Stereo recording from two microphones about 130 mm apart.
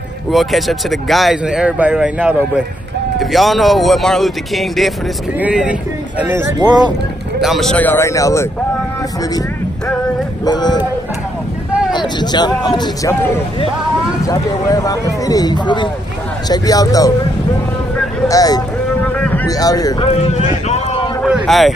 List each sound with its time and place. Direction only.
0.3 s speech: centre (ahead or behind); by 6.5 s 15° right (ahead or behind)
7.3 s speech: centre (ahead or behind)
7.7 s speech: 15° left (ahead or behind)
10.4 s speech: 35° left (ahead or behind)
11.9 s speech: 35° left (ahead or behind)
14.2 s speech: 25° left (ahead or behind)
18.3 s speech: 30° left (ahead or behind)
19.0 s boat: 10° left (ahead or behind)
19.4 s speech: 30° left (ahead or behind)
20.2 s speech: 60° left (ahead or behind)
21.3 s a sound: 5° right (ahead or behind)